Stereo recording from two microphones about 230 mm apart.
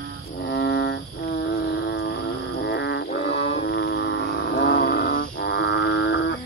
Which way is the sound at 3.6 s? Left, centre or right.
Left.